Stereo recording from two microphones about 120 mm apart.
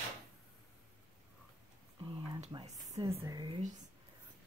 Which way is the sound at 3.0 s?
25° right (ahead or behind).